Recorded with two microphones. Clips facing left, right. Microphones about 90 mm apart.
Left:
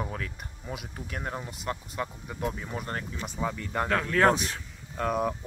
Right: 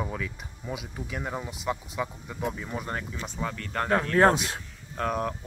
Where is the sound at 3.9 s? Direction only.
20° right (ahead or behind).